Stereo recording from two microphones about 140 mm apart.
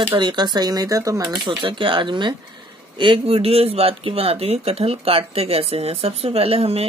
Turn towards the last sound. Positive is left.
turn(degrees=-45)  # may be behind; listen again after turning